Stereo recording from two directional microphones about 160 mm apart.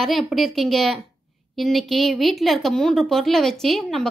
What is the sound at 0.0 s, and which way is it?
A woman's voice, centre (ahead or behind).